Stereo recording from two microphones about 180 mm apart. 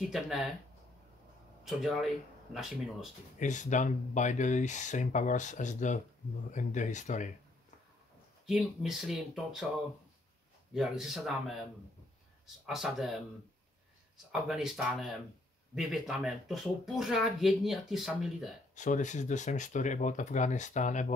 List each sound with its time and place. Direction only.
0.0 s speech: centre (ahead or behind)
1.6 s speech: centre (ahead or behind)
3.3 s speech: 45° left (ahead or behind)
8.5 s speech: 5° right (ahead or behind)
10.7 s speech: centre (ahead or behind)
12.6 s speech: centre (ahead or behind)
14.1 s speech: centre (ahead or behind)
18.8 s speech: 45° left (ahead or behind)